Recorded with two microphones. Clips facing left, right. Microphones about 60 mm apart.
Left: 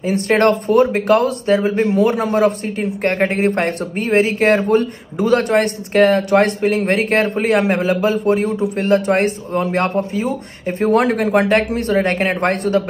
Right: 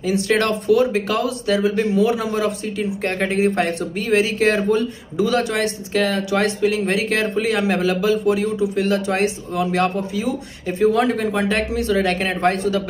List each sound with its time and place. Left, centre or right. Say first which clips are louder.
0.0 s speech: left 4 dB; left
11.0 s speech: left 4 dB; left